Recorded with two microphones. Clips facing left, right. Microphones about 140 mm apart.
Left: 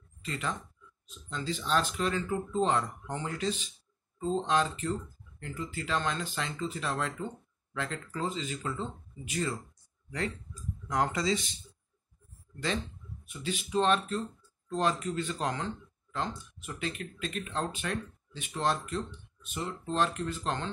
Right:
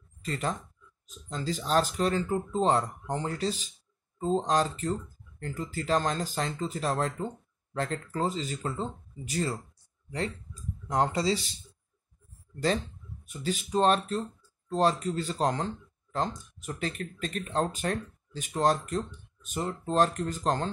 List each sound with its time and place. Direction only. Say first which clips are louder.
0.2 s speech: right 4 dB; 40° right (ahead or behind)
12.5 s speech: right 5 dB; 40° right (ahead or behind)